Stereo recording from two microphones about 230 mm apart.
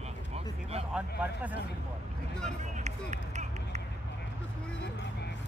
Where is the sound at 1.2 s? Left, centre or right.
Centre.